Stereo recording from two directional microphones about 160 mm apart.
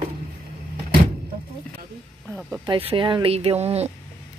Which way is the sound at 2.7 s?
35° right (ahead or behind).